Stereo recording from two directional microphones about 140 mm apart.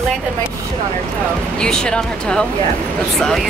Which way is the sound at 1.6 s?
5° left (ahead or behind).